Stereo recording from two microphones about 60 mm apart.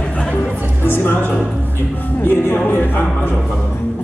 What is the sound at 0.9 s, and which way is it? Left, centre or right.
Speech, left.